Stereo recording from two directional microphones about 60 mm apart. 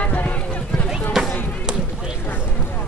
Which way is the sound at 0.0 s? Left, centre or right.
Left.